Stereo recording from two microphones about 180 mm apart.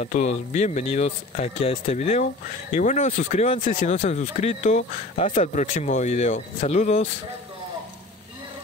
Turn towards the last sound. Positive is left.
turn(degrees=40)  # may be behind; listen again after turning